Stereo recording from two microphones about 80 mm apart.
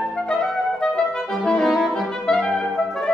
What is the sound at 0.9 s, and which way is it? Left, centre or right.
Brass instrument, centre.